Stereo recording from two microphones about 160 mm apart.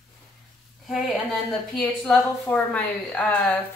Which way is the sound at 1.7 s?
5° left (ahead or behind).